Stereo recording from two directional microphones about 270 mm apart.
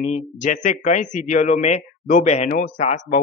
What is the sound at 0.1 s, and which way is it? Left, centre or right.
Speech, left.